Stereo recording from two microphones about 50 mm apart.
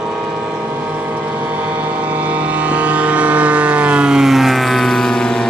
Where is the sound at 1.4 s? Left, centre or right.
Right; by 5.2 s centre.